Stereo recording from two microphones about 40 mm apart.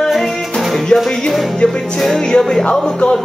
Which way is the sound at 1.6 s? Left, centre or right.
Left.